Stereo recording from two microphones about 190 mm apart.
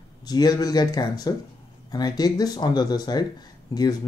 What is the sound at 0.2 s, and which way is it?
Speech, 20° left (ahead or behind).